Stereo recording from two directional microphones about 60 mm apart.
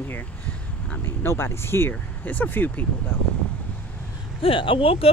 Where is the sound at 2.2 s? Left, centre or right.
Left.